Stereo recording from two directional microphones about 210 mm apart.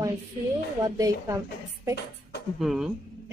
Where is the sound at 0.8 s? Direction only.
15° right (ahead or behind).